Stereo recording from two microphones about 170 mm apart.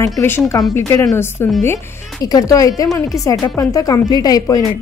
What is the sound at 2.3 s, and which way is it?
A woman's voice, 20° left (ahead or behind).